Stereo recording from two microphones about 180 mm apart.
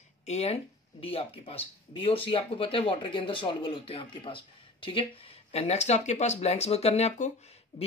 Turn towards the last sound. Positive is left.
turn(degrees=40)  # may be behind; listen again after turning